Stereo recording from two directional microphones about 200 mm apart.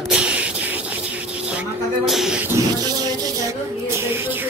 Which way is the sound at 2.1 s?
Centre (ahead or behind).